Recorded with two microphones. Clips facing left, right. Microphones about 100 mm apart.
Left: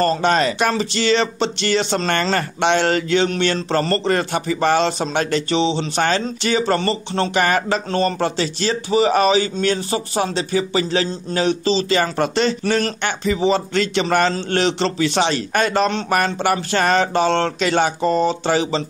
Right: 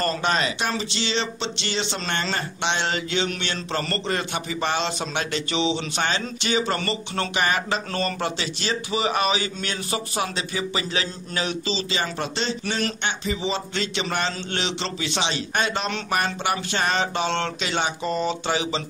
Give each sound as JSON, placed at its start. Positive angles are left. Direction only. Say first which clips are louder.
{"t": 0.0, "sound": "speech", "louder": "left 7 dB", "side_deg": 35}
{"t": 7.3, "sound": "speech", "louder": "left 5 dB", "side_deg": 45}
{"t": 11.9, "sound": "speech", "louder": "left 9 dB", "side_deg": 55}